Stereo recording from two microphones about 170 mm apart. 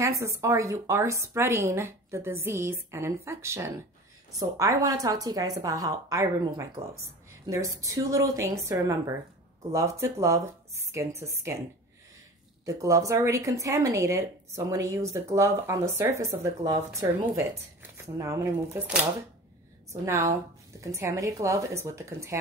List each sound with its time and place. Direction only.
0.0 s a woman's voice: 20° right (ahead or behind)
12.6 s speech: 20° right (ahead or behind)
20.1 s speech: 15° right (ahead or behind)